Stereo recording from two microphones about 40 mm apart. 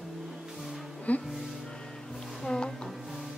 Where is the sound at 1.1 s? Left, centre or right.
Left.